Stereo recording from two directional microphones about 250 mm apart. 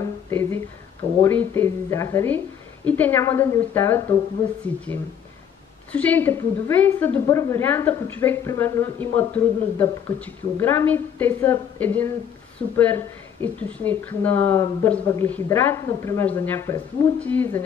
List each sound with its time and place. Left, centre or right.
0.3 s a sound: centre
1.2 s a woman's voice: centre
5.9 s a woman's voice: centre